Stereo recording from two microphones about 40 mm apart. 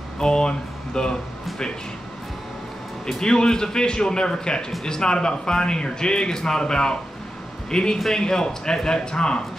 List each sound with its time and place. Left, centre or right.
0.2 s speech: centre
3.1 s a man's voice: centre